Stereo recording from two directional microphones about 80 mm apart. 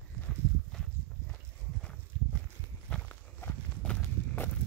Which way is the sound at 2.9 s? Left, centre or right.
Centre.